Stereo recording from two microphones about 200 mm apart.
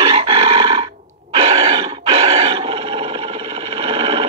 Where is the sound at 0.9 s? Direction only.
35° right (ahead or behind).